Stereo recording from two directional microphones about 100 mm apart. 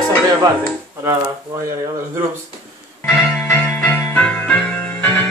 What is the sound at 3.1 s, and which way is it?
Music, 20° left (ahead or behind).